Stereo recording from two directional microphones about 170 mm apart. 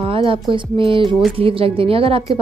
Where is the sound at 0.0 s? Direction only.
30° right (ahead or behind).